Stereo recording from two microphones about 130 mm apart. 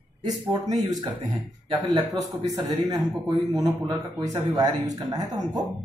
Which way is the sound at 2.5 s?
30° right (ahead or behind).